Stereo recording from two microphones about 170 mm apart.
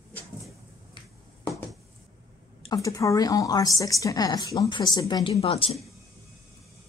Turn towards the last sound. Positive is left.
turn(degrees=35)  # may be behind; listen again after turning